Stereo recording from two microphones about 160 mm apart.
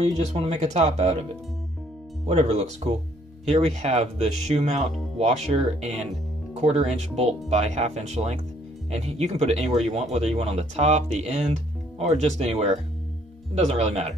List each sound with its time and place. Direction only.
0.0 s speech: 40° right (ahead or behind)
2.2 s speech: 45° right (ahead or behind)